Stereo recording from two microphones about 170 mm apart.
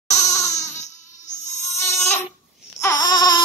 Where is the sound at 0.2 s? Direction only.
20° left (ahead or behind).